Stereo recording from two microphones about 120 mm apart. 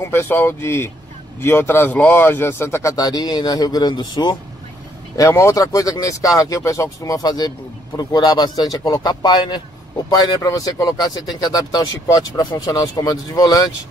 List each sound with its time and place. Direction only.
0.0 s speech: 20° left (ahead or behind); by 4.4 s 35° left (ahead or behind)
5.1 s speech: 25° left (ahead or behind)